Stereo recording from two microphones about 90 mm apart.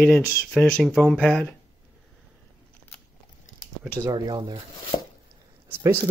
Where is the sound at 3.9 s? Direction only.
50° right (ahead or behind).